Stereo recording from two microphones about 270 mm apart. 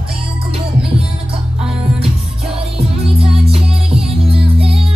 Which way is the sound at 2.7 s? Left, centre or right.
Right.